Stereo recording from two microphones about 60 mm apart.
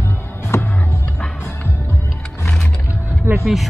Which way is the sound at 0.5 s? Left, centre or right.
Left.